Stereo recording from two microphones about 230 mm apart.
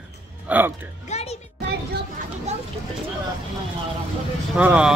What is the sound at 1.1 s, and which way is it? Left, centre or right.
Music, left.